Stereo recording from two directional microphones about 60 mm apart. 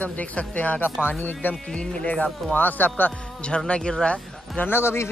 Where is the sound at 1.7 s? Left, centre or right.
Centre.